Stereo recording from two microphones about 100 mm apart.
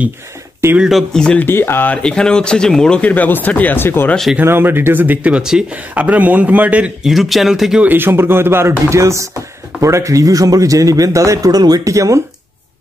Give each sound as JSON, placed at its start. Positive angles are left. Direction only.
{"t": 0.7, "sound": "speech", "side_deg": -5}
{"t": 1.4, "sound": "speech", "side_deg": 25}
{"t": 2.0, "sound": "speech", "side_deg": 10}
{"t": 4.4, "sound": "speech", "side_deg": -20}
{"t": 7.8, "sound": "a man's voice", "side_deg": -20}